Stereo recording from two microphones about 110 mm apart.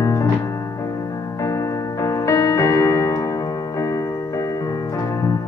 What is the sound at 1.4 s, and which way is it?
Music, 30° left (ahead or behind).